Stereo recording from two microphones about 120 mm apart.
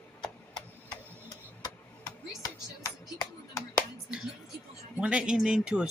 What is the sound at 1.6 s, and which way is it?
Chopping, 30° left (ahead or behind).